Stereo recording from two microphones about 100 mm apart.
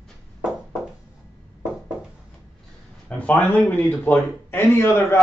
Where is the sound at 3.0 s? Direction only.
15° left (ahead or behind).